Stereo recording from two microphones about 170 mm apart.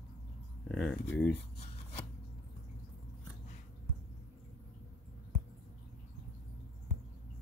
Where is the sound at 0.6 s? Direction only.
5° left (ahead or behind).